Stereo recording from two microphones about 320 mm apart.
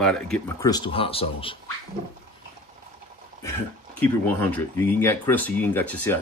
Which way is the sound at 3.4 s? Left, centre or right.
Centre.